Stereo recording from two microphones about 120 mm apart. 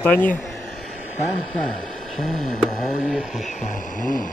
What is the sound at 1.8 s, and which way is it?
Speech, centre (ahead or behind).